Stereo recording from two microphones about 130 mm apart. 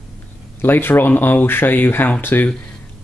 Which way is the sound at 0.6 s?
15° left (ahead or behind).